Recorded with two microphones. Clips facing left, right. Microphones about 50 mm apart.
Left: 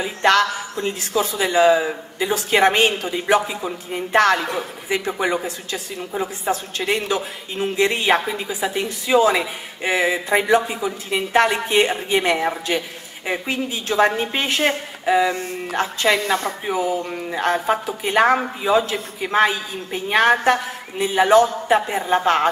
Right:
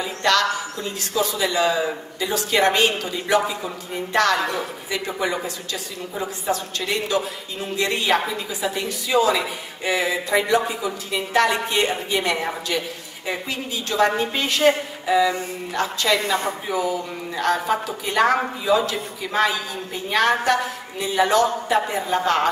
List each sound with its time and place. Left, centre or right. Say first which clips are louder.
0.0 s a woman's voice: left 3 dB; left